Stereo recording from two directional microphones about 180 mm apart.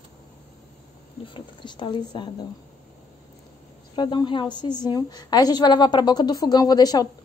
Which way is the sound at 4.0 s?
25° left (ahead or behind).